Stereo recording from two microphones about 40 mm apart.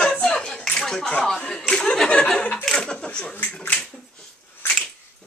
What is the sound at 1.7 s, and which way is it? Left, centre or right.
Speech, left.